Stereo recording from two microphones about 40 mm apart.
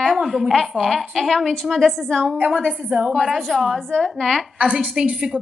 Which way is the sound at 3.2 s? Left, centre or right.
Centre.